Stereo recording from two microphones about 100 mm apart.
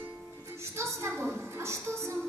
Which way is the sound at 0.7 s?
30° right (ahead or behind).